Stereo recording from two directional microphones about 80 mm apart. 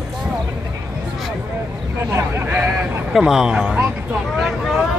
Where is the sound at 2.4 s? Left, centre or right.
Right.